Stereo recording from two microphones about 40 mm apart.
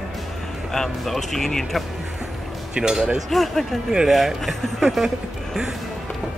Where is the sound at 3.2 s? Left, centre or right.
Centre.